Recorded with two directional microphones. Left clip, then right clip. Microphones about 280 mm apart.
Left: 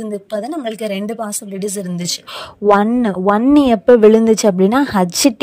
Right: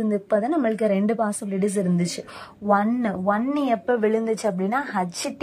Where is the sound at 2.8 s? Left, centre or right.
Left.